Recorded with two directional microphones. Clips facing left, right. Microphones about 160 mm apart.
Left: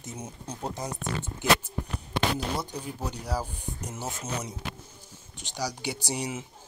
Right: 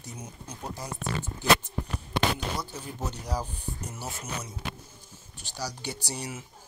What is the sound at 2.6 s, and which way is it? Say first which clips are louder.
Speech: left 2 dB; 15° left (ahead or behind).